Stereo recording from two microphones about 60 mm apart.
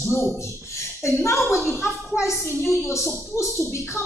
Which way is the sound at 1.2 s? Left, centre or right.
Left.